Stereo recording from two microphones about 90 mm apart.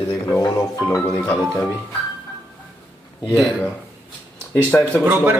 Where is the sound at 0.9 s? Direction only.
35° left (ahead or behind).